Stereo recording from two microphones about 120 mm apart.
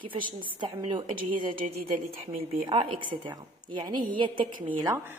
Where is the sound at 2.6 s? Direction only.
45° right (ahead or behind).